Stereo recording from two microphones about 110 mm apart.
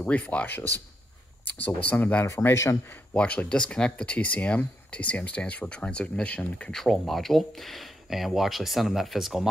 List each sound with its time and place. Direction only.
0.0 s speech: 15° left (ahead or behind)
1.8 s speech: 15° left (ahead or behind)
3.2 s speech: 10° left (ahead or behind)